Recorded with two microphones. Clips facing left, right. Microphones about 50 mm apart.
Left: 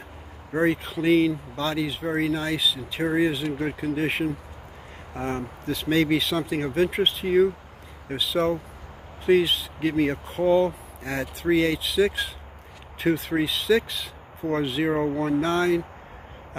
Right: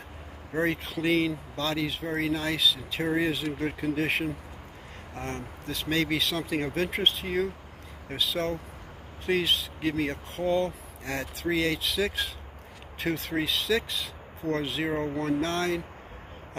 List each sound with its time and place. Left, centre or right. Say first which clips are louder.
0.6 s speech: left 5 dB; centre
5.1 s speech: left 7 dB; centre
9.8 s speech: left 5 dB; centre
10.2 s speech: left 6 dB; centre